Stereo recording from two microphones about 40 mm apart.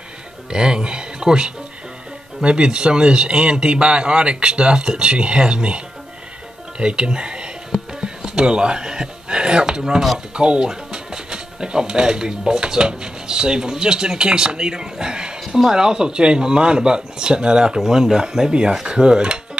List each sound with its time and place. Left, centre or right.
0.5 s speech: centre
6.8 s speech: right